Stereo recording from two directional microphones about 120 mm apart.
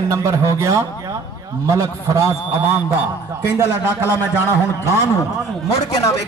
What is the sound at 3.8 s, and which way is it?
Speech, 20° left (ahead or behind).